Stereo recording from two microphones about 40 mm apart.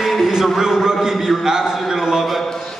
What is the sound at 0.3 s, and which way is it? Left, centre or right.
A man's voice, centre.